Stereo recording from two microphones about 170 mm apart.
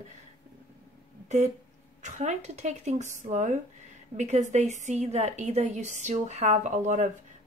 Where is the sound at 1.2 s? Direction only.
40° right (ahead or behind).